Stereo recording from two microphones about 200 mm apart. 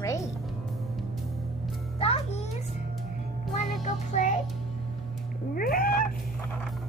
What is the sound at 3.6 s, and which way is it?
Child singing, 35° left (ahead or behind).